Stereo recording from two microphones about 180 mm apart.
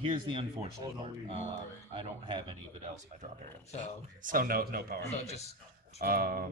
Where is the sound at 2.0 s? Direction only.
25° right (ahead or behind).